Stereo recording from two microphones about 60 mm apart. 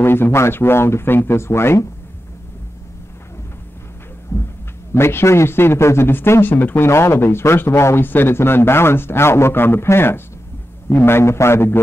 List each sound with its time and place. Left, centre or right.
0.0 s speech: left
4.3 s a sound: left
4.9 s speech: left
6.9 s speech: left